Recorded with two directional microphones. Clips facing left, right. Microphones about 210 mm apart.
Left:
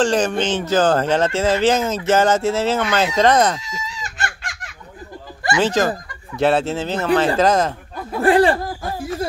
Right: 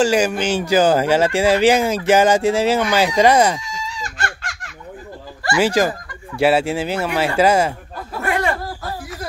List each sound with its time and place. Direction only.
0.0 s speech: 10° right (ahead or behind)
3.6 s chicken: 20° left (ahead or behind)
5.6 s speech: 10° right (ahead or behind)
8.2 s laughter: 30° left (ahead or behind)